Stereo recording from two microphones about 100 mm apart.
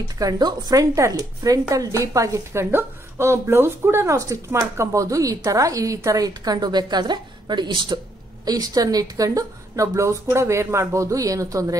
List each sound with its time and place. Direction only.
0.2 s a woman's voice: 40° right (ahead or behind)
8.5 s a woman's voice: 40° right (ahead or behind)